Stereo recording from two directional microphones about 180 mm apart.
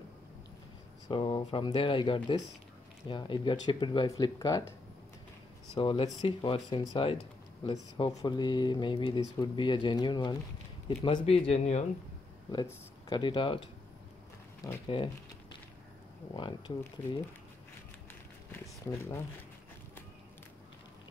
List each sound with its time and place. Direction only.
1.0 s speech: 25° left (ahead or behind)
5.8 s speech: 25° left (ahead or behind)
12.4 s speech: 25° left (ahead or behind)
16.3 s speech: 25° left (ahead or behind)